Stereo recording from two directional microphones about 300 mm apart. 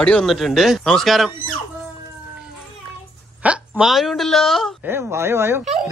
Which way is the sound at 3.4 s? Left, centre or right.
Centre.